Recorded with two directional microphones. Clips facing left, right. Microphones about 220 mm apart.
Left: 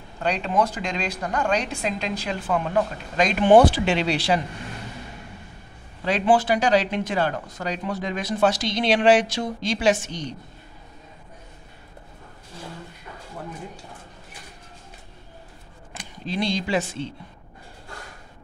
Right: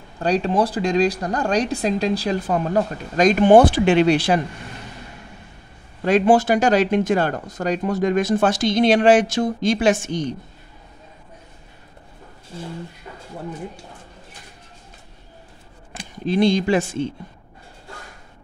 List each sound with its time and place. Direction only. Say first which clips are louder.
0.2 s speech: right 4 dB; 35° right (ahead or behind)
6.0 s speech: right 5 dB; 45° right (ahead or behind)
16.3 s speech: right 8 dB; 50° right (ahead or behind)